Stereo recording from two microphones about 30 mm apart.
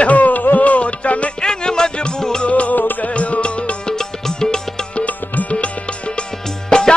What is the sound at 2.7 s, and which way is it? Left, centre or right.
Music, left.